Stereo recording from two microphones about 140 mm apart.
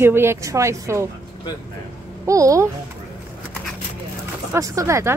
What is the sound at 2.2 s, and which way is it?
Speech, 25° right (ahead or behind).